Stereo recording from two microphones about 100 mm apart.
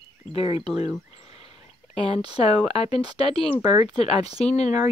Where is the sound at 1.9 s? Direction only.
90° left.